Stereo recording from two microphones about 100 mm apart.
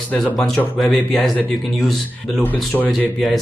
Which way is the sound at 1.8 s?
Centre (ahead or behind).